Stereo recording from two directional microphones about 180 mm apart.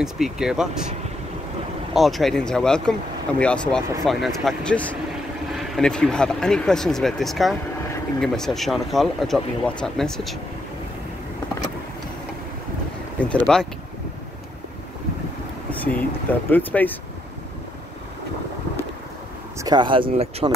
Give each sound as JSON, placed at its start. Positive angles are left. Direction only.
{"t": 0.0, "sound": "speech", "side_deg": -5}
{"t": 2.0, "sound": "speech", "side_deg": 0}
{"t": 13.2, "sound": "speech", "side_deg": 5}
{"t": 15.7, "sound": "a sound", "side_deg": 10}
{"t": 19.6, "sound": "speech", "side_deg": -25}